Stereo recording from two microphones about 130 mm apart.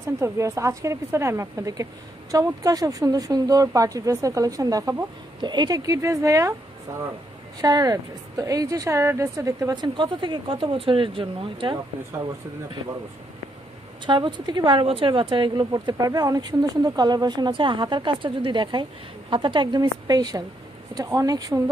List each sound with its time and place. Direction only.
0.2 s speech: 25° right (ahead or behind)
7.6 s speech: 30° right (ahead or behind)
9.8 s a woman's voice: 35° right (ahead or behind)
14.0 s a woman's voice: 35° right (ahead or behind)